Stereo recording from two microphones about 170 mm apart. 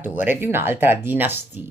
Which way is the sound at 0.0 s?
10° right (ahead or behind).